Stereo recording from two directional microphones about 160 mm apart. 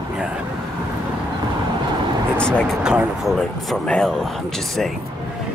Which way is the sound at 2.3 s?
5° left (ahead or behind).